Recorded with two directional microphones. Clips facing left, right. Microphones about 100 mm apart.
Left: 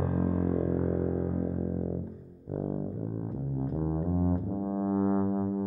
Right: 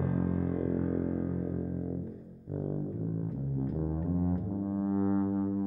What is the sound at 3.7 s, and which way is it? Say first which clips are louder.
Music: left 4 dB; 30° left (ahead or behind).